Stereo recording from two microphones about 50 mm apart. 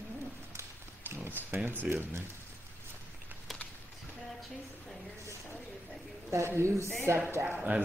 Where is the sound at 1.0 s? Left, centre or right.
Right.